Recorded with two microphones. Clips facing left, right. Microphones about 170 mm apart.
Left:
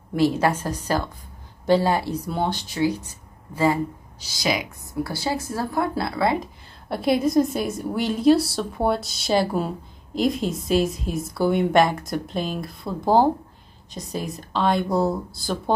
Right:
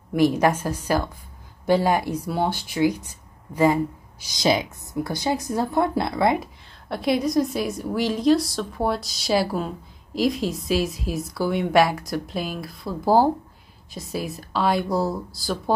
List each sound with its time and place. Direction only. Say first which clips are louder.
0.1 s speech: right 1 dB; 15° right (ahead or behind)
6.9 s a woman's voice: left 2 dB; centre (ahead or behind)
13.9 s a woman's voice: even; 5° right (ahead or behind)